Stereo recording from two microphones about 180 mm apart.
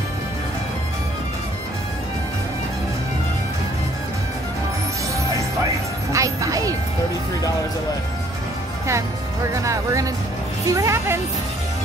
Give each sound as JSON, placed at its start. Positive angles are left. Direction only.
{"t": 6.1, "sound": "music", "side_deg": -20}
{"t": 9.5, "sound": "music", "side_deg": -15}